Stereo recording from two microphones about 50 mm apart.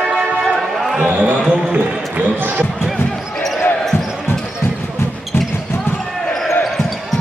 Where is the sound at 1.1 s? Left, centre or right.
Right.